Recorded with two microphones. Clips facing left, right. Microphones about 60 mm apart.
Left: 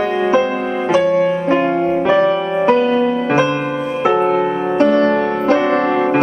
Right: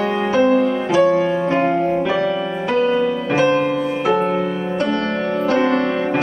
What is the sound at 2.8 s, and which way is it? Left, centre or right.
Music, left.